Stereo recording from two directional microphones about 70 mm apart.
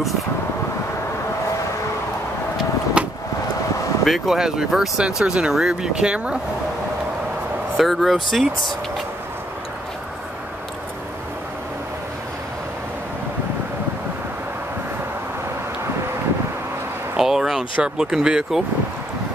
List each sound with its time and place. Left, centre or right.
3.0 s vehicle: centre
4.0 s speech: centre
7.8 s speech: centre
17.2 s speech: centre